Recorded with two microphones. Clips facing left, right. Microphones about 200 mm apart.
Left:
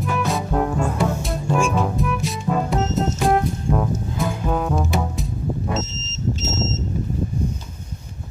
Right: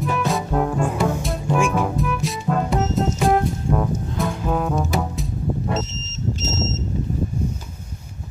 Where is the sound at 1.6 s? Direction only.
10° right (ahead or behind).